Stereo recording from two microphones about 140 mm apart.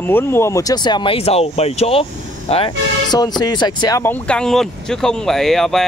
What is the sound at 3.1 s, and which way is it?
Speech, 30° left (ahead or behind).